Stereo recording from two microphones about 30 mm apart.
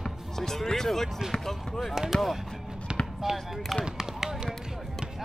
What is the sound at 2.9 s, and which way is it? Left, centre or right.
Basketball bounce, right.